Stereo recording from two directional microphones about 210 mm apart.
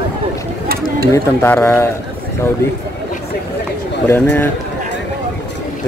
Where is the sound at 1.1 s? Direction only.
10° left (ahead or behind).